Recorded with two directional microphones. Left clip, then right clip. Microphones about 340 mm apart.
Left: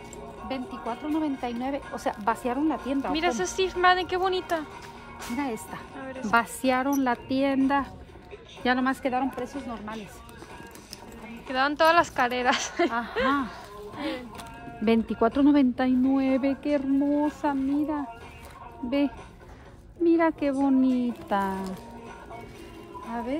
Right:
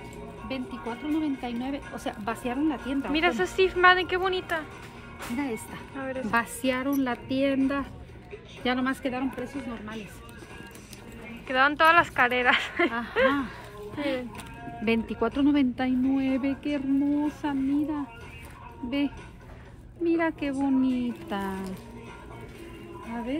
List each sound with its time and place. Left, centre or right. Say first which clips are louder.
0.5 s a woman's voice: left 2 dB; centre
3.1 s speech: right 2 dB; centre
5.4 s a woman's voice: left 1 dB; left
5.9 s speech: right 5 dB; centre
6.3 s a woman's voice: left 4 dB; left
11.4 s speech: right 1 dB; centre
13.9 s a woman's voice: right 3 dB; left